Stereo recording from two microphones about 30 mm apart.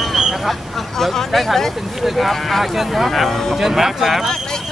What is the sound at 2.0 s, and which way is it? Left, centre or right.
Speech, centre.